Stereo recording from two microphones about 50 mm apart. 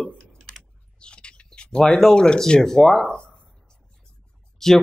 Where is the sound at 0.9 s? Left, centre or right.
Centre.